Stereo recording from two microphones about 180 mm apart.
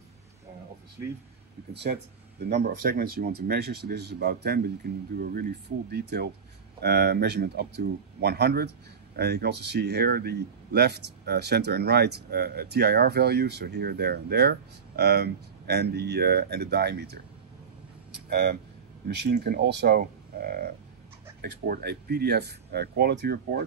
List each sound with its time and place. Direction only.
1.7 s speech: 65° right (ahead or behind)